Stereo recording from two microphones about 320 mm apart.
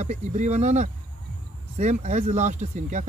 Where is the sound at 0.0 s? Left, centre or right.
Right.